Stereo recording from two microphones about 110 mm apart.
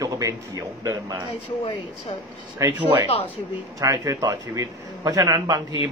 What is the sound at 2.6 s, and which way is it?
A man's voice, 25° right (ahead or behind).